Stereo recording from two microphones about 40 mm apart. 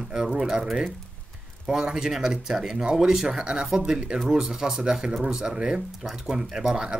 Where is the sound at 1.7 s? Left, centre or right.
Centre.